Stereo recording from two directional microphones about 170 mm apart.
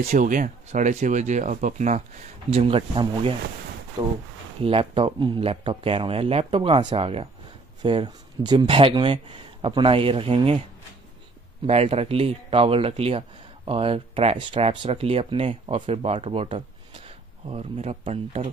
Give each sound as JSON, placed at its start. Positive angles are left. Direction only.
{"t": 0.1, "sound": "speech", "side_deg": -50}
{"t": 2.5, "sound": "speech", "side_deg": -35}
{"t": 4.6, "sound": "speech", "side_deg": -35}
{"t": 11.6, "sound": "speech", "side_deg": -35}